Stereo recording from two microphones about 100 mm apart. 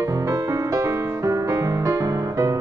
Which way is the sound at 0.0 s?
30° right (ahead or behind).